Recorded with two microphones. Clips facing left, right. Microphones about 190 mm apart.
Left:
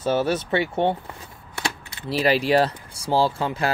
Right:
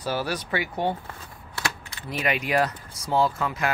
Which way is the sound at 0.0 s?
25° left (ahead or behind).